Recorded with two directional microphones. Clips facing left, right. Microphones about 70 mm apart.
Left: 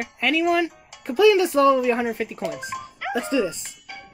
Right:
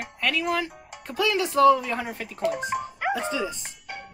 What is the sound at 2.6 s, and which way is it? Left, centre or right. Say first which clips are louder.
Dog: right 4 dB; right.